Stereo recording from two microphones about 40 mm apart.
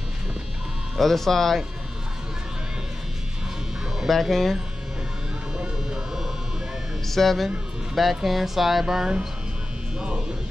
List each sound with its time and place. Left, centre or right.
0.9 s speech: centre
4.1 s speech: centre
5.6 s a sound: centre
7.1 s speech: centre
8.8 s speech: centre